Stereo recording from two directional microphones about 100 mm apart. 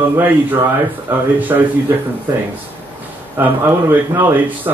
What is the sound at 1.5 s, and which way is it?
Speech, 30° right (ahead or behind).